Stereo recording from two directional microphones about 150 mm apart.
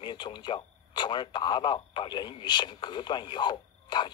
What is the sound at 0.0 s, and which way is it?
Speech, 30° left (ahead or behind).